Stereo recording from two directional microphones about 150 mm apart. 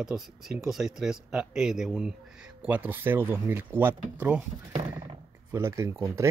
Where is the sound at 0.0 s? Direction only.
Centre (ahead or behind).